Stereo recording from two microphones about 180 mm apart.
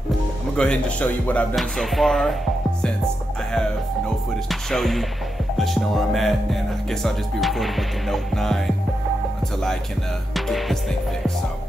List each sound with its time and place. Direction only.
0.6 s speech: 5° left (ahead or behind)
4.5 s speech: centre (ahead or behind)
10.3 s music: centre (ahead or behind)